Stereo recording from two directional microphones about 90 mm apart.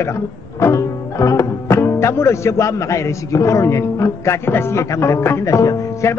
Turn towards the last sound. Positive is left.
turn(degrees=40)  # may be behind; listen again after turning